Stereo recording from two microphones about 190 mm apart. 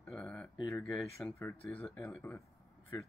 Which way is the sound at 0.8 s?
Centre (ahead or behind).